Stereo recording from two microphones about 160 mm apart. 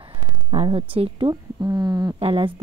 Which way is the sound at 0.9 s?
30° right (ahead or behind).